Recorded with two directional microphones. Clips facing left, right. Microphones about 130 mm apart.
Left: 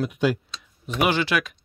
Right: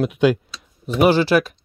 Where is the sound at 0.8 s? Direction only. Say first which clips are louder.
Right 7 dB; 35° right (ahead or behind).